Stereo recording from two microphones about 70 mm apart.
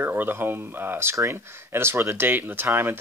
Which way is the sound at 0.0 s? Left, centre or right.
Right.